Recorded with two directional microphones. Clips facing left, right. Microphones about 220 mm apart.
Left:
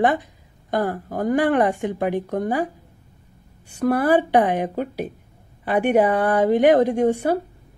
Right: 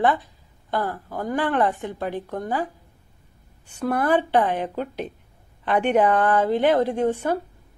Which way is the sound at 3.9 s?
10° left (ahead or behind).